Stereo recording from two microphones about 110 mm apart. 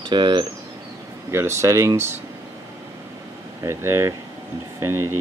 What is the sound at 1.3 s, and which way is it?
Speech, 25° right (ahead or behind).